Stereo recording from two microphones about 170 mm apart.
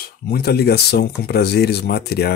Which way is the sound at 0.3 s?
70° left (ahead or behind).